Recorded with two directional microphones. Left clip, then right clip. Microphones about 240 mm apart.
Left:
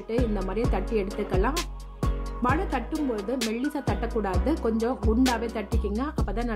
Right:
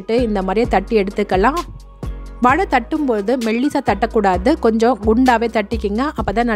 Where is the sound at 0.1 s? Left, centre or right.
Right.